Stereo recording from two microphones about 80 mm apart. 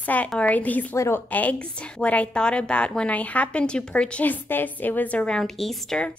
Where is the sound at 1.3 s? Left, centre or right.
Centre.